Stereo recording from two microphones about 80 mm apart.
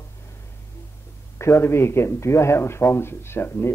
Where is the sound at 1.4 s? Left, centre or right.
Left.